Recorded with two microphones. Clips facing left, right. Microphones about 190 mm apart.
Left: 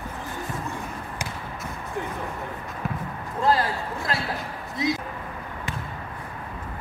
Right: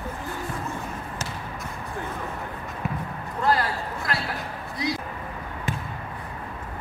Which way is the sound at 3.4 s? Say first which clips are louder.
Left 1 dB; 25° left (ahead or behind).